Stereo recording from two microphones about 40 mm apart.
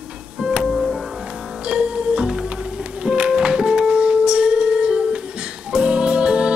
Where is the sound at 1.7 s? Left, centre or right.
Right.